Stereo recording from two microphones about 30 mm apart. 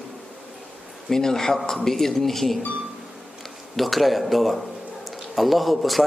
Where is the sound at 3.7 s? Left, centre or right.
Centre.